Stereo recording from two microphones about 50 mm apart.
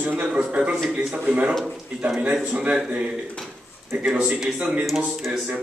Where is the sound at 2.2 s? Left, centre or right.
Right.